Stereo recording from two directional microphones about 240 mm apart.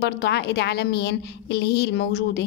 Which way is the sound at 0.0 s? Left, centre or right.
Left.